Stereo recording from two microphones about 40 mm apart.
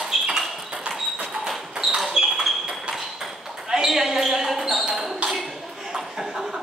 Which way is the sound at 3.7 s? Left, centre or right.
Centre.